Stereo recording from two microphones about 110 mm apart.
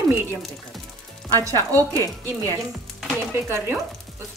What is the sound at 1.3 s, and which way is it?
Speech, 30° right (ahead or behind).